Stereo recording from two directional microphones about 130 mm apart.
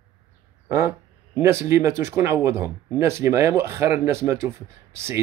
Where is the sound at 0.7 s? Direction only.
20° right (ahead or behind).